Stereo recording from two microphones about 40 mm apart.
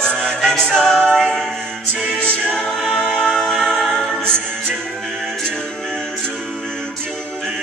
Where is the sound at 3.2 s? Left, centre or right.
Centre.